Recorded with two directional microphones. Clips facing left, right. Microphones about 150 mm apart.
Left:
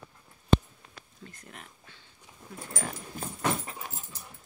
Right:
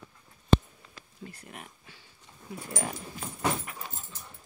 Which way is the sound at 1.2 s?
10° right (ahead or behind).